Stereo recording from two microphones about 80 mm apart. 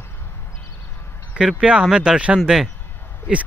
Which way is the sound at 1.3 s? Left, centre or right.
Centre.